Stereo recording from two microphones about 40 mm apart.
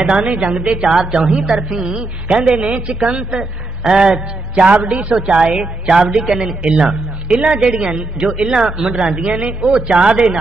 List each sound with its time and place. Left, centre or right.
0.0 s a woman's voice: right
2.2 s a woman's voice: right
4.6 s a man's voice: right